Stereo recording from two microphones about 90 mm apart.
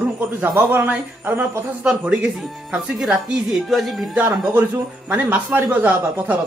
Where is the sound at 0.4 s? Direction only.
25° right (ahead or behind).